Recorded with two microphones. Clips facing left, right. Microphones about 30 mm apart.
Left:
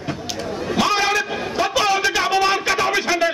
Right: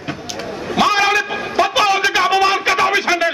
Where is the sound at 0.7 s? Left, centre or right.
Centre.